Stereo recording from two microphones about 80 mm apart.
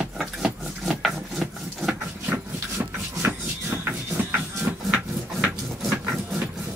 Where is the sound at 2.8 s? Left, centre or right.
Right.